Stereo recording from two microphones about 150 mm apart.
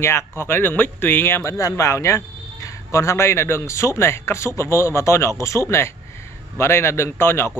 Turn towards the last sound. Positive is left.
turn(degrees=15)  # may be behind; listen again after turning